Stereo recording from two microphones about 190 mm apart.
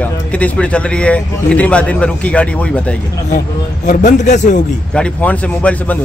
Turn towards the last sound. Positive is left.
turn(degrees=10)  # may be behind; listen again after turning